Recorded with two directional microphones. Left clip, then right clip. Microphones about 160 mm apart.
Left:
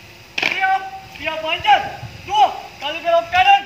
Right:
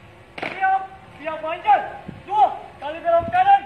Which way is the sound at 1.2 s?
20° left (ahead or behind).